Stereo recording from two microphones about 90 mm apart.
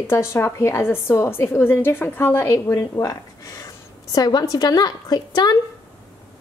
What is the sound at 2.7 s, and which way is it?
A woman's voice, 40° left (ahead or behind).